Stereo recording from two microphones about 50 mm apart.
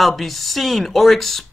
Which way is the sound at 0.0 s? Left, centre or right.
Centre.